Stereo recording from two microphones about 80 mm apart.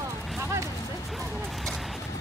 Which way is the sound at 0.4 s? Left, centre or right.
Right.